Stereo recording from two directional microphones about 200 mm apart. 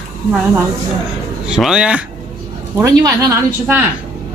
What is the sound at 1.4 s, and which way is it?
Speech, 5° right (ahead or behind).